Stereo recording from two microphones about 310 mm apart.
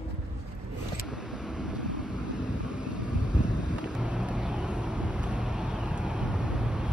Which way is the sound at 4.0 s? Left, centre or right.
Centre.